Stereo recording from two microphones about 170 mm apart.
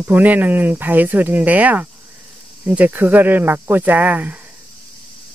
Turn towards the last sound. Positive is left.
turn(degrees=-10)  # may be behind; listen again after turning